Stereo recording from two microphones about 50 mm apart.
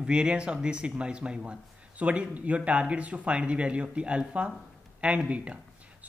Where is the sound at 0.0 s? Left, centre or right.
Centre.